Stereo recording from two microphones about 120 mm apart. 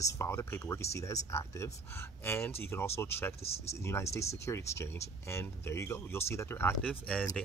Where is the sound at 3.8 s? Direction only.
20° left (ahead or behind).